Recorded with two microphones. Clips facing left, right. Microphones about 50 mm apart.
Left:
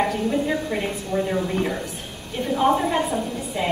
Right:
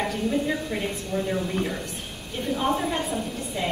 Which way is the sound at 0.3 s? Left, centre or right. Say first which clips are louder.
Left 3 dB; centre.